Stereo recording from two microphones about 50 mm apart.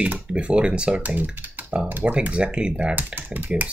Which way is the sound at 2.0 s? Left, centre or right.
Right.